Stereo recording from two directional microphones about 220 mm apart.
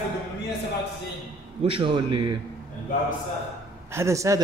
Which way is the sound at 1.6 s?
25° right (ahead or behind).